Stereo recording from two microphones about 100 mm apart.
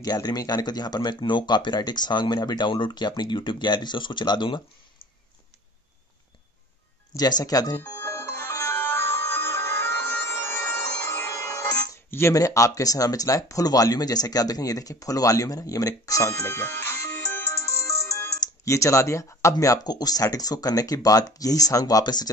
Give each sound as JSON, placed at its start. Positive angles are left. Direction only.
{"t": 0.0, "sound": "speech", "side_deg": 40}
{"t": 7.2, "sound": "speech", "side_deg": 40}
{"t": 8.0, "sound": "music", "side_deg": 25}
{"t": 12.1, "sound": "speech", "side_deg": 25}